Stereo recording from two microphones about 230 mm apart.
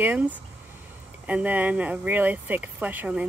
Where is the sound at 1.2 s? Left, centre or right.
Centre.